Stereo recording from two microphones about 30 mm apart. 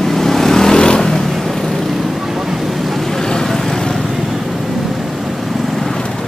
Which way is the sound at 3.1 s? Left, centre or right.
Centre.